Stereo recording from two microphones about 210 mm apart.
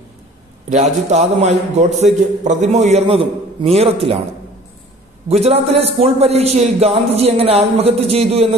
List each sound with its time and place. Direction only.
0.7 s a man's voice: 35° right (ahead or behind)
5.3 s a man's voice: 30° right (ahead or behind)